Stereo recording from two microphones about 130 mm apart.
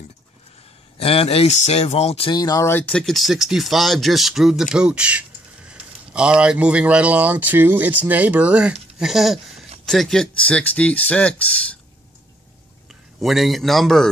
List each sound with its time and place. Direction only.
0.9 s speech: 50° left (ahead or behind)
2.3 s speech: 25° left (ahead or behind); by 11.8 s 10° left (ahead or behind)
13.2 s speech: centre (ahead or behind)